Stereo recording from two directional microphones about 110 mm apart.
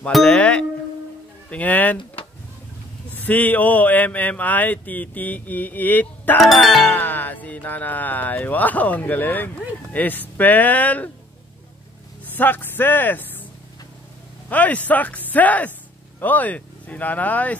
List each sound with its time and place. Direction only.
0.1 s speech: 10° left (ahead or behind)
3.2 s speech: 15° left (ahead or behind)
6.3 s music: centre (ahead or behind)
6.9 s speech: 15° left (ahead or behind)
12.3 s speech: 15° left (ahead or behind)
14.5 s speech: 15° left (ahead or behind)